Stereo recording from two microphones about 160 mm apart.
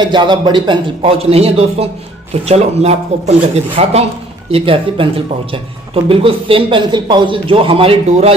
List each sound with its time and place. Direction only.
0.0 s speech: 30° right (ahead or behind)